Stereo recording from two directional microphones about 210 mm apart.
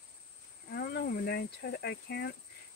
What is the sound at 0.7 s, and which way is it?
Speech, 50° left (ahead or behind).